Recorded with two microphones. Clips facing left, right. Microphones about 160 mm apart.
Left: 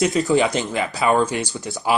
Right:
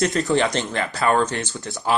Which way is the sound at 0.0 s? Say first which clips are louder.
Left 2 dB; centre (ahead or behind).